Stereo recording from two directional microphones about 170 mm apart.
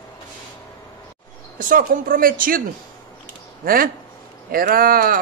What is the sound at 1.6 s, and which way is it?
Speech, 50° right (ahead or behind).